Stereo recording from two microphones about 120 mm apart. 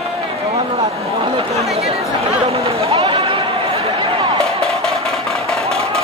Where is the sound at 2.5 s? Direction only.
55° right (ahead or behind).